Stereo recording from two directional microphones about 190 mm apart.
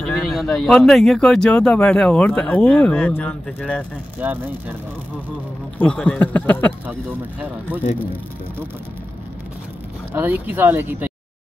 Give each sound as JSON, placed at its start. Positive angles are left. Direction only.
{"t": 0.0, "sound": "speech", "side_deg": 0}
{"t": 4.2, "sound": "speech", "side_deg": -10}
{"t": 5.8, "sound": "speech", "side_deg": 5}
{"t": 6.9, "sound": "speech", "side_deg": -10}
{"t": 10.1, "sound": "speech", "side_deg": -10}